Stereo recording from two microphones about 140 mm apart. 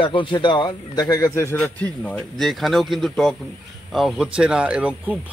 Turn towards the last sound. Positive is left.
turn(degrees=-10)  # may be behind; listen again after turning